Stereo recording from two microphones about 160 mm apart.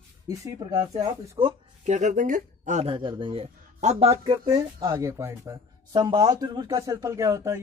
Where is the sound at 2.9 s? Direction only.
30° right (ahead or behind).